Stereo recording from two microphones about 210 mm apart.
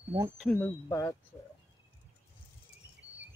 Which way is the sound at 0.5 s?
15° left (ahead or behind).